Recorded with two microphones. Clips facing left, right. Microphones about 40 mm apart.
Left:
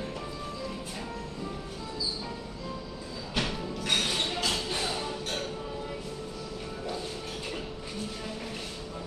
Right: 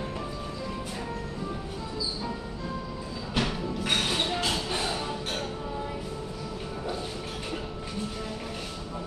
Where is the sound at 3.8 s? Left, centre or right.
Centre.